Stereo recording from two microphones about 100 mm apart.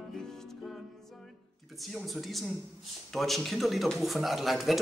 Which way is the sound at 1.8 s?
Centre (ahead or behind).